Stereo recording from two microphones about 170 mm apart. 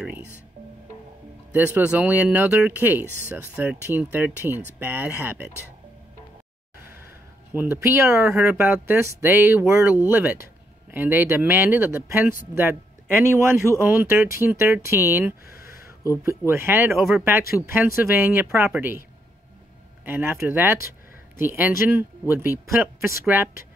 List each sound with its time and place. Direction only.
1.5 s speech: 10° right (ahead or behind)
7.5 s speech: 10° right (ahead or behind)
13.3 s speech: 15° right (ahead or behind)
15.5 s a sound: 60° left (ahead or behind)
16.3 s speech: 15° right (ahead or behind)
16.9 s speech: centre (ahead or behind)
17.7 s speech: 10° right (ahead or behind)
20.1 s speech: 10° right (ahead or behind)